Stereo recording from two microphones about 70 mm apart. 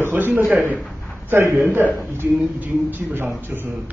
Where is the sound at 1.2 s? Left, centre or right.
Right.